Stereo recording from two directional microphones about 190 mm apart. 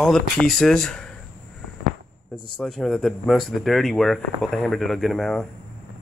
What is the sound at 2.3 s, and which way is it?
Speech, 25° left (ahead or behind).